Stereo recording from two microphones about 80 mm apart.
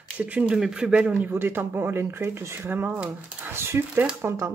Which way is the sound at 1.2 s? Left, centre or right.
Right.